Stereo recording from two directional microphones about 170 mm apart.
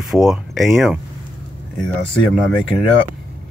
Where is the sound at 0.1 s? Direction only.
Centre (ahead or behind).